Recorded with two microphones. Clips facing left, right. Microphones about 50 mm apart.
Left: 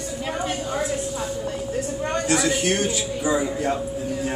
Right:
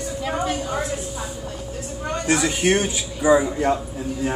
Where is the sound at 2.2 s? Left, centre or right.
Right.